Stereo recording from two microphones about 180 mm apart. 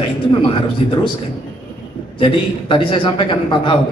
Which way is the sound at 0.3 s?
25° left (ahead or behind).